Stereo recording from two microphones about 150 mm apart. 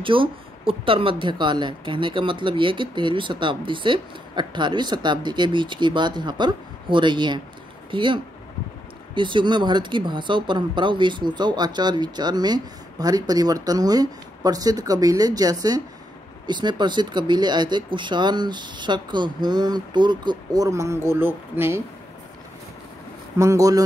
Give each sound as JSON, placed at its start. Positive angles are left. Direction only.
{"t": 0.0, "sound": "speech", "side_deg": -35}
{"t": 23.3, "sound": "speech", "side_deg": -20}